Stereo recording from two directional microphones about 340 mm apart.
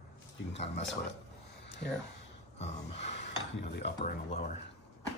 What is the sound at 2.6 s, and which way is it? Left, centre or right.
Speech, centre.